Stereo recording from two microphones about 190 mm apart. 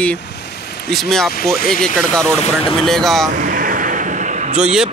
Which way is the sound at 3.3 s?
45° right (ahead or behind).